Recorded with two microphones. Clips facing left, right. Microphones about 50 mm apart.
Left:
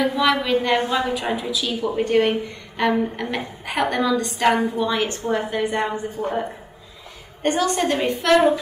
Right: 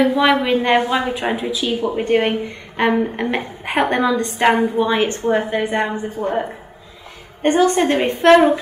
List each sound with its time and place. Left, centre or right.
0.0 s a woman's voice: right
7.4 s a woman's voice: right